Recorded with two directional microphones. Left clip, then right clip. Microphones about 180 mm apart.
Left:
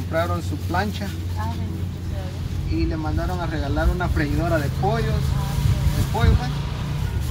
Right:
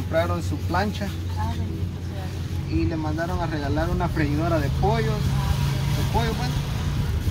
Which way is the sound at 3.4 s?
5° right (ahead or behind).